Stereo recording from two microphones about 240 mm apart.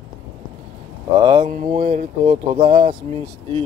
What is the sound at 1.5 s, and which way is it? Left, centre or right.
Speech, right.